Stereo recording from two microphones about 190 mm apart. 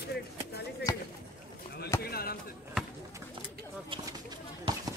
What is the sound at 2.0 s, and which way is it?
Basketball bounce, 55° left (ahead or behind).